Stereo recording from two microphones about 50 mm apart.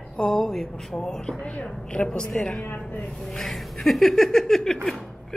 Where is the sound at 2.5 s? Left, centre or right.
Left.